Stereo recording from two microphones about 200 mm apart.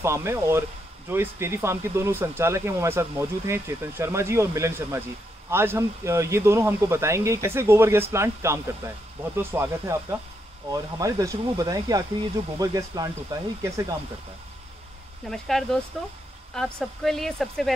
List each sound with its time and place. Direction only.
0.0 s speech: 15° right (ahead or behind)
15.2 s speech: centre (ahead or behind)
16.8 s speech: centre (ahead or behind)